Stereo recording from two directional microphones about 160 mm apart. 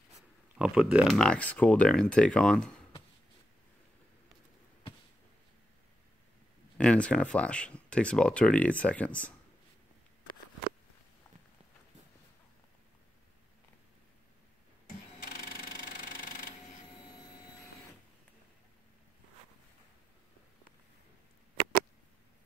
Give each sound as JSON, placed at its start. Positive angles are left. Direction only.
{"t": 0.6, "sound": "speech", "side_deg": -5}
{"t": 6.8, "sound": "speech", "side_deg": 5}
{"t": 15.2, "sound": "sewing machine", "side_deg": 65}